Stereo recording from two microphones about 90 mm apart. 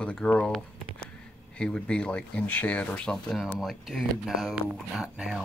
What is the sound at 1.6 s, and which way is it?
Speech, 10° left (ahead or behind).